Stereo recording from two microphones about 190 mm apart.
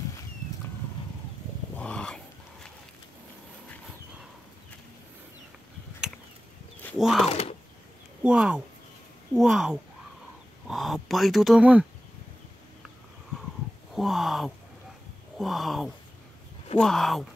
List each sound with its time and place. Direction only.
1.8 s a sound: 5° left (ahead or behind)
7.0 s speech: centre (ahead or behind)
7.2 s speech: 30° left (ahead or behind)
8.2 s speech: 5° right (ahead or behind)
13.9 s a sound: centre (ahead or behind)
15.3 s speech: centre (ahead or behind)